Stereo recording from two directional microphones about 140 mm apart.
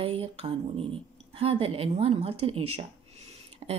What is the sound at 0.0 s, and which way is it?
Speech, 45° right (ahead or behind).